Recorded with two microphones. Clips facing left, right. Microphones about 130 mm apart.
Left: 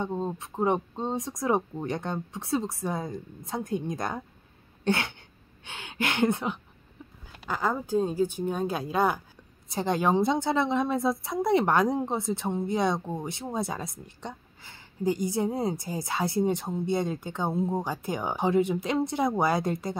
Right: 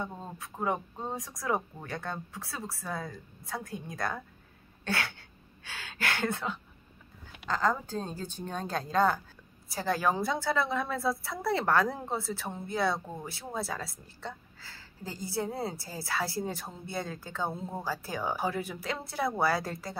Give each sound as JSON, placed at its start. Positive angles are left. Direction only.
{"t": 0.0, "sound": "a woman's voice", "side_deg": 25}
{"t": 4.8, "sound": "a sound", "side_deg": 20}
{"t": 5.6, "sound": "a woman's voice", "side_deg": 20}